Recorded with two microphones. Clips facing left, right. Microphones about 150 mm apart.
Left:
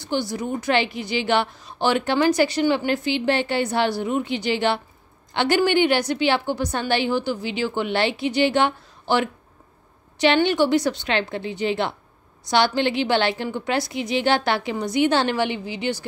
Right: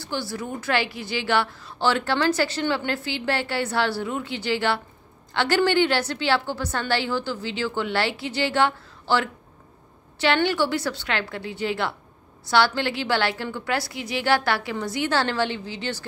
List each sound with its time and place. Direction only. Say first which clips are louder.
0.0 s a woman's voice: left 5 dB; 20° left (ahead or behind)